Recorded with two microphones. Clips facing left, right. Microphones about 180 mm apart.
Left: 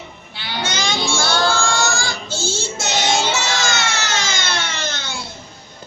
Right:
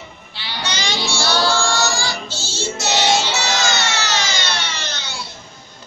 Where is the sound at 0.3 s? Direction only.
50° left (ahead or behind).